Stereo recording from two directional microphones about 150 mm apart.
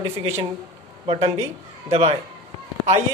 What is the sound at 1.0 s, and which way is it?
Speech, 35° right (ahead or behind).